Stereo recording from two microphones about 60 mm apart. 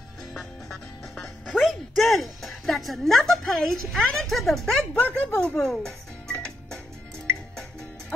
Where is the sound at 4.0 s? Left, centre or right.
Centre.